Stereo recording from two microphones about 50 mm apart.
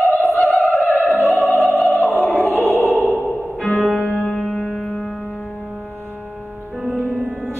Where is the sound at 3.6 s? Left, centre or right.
Left.